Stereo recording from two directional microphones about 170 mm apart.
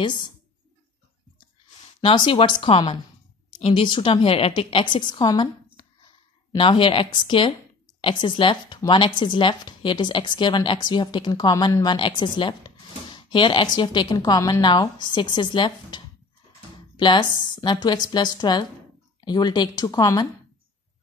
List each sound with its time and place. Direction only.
2.0 s a woman's voice: 25° left (ahead or behind)